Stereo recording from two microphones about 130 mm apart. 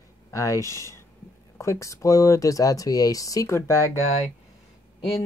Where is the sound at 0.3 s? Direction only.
25° left (ahead or behind).